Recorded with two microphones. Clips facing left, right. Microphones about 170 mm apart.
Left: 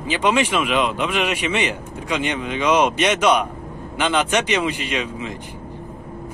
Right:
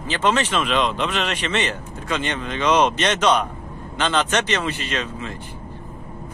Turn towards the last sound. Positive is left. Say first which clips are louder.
# left 2 dB
turn(degrees=15)  # may be behind; listen again after turning